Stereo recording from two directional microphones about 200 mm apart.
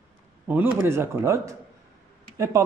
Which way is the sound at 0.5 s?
10° right (ahead or behind).